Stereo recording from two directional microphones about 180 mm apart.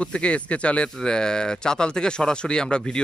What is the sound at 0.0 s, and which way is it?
Speech, 5° left (ahead or behind).